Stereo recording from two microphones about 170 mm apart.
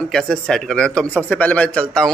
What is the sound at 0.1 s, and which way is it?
Speech, 5° left (ahead or behind).